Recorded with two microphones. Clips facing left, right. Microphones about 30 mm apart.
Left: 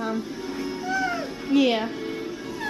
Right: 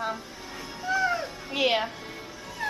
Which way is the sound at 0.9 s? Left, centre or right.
Centre.